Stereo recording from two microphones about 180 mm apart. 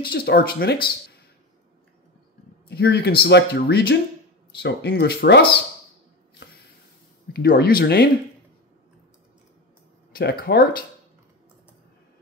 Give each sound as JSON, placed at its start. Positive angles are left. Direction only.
{"t": 0.0, "sound": "speech", "side_deg": 60}
{"t": 2.7, "sound": "speech", "side_deg": 65}
{"t": 7.3, "sound": "speech", "side_deg": 55}
{"t": 10.1, "sound": "speech", "side_deg": 60}